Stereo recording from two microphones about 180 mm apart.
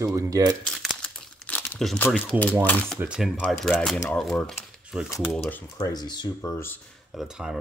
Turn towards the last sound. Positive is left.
turn(degrees=-5)  # may be behind; listen again after turning